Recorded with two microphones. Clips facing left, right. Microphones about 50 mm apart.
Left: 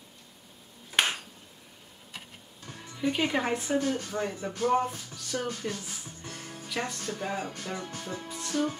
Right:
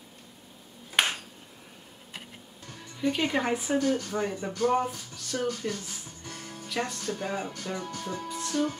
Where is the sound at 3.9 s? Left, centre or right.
Centre.